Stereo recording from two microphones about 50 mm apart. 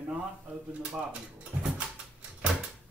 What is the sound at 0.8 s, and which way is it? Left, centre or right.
Speech, centre.